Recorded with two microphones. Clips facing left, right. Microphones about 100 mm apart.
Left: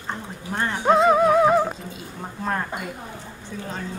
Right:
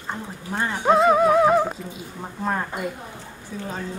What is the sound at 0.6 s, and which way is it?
Speech, centre (ahead or behind).